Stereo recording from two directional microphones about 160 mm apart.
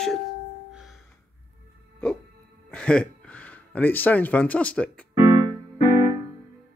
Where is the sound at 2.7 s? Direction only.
5° left (ahead or behind).